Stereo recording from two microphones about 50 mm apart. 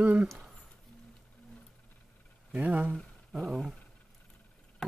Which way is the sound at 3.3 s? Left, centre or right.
Centre.